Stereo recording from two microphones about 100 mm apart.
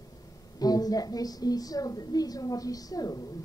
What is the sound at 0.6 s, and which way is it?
A woman's voice, 40° left (ahead or behind).